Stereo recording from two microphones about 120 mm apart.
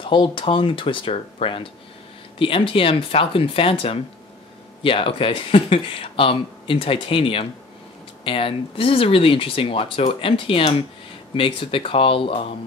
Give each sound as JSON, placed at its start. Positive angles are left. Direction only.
{"t": 0.0, "sound": "speech", "side_deg": 40}